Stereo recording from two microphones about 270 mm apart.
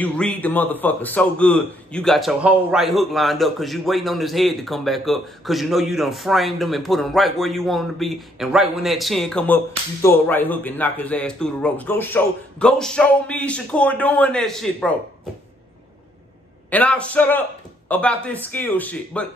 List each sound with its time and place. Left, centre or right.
0.0 s a man's voice: centre
16.7 s a man's voice: centre